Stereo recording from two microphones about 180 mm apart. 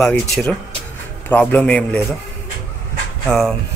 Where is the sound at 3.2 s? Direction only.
Centre (ahead or behind).